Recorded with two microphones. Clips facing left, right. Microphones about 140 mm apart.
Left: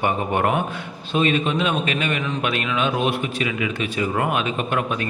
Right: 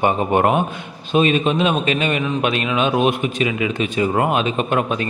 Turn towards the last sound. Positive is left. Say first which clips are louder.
# right 4 dB
turn(degrees=-25)  # may be behind; listen again after turning